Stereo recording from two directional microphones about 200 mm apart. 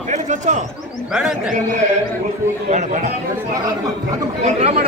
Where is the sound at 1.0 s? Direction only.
5° right (ahead or behind).